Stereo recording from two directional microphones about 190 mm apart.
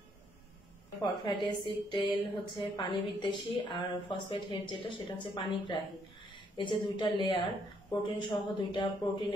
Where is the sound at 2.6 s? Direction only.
25° left (ahead or behind).